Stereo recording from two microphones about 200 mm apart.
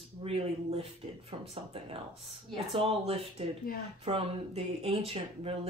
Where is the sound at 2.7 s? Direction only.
30° right (ahead or behind).